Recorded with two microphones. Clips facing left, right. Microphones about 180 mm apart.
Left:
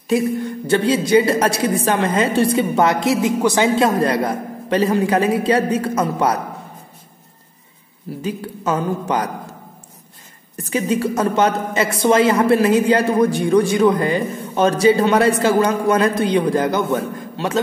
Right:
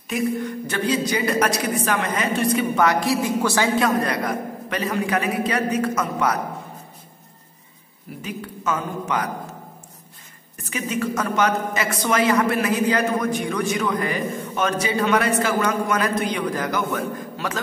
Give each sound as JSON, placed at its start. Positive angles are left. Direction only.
{"t": 0.7, "sound": "a woman's voice", "side_deg": 25}
{"t": 8.2, "sound": "speech", "side_deg": 30}
{"t": 10.7, "sound": "a woman's voice", "side_deg": 30}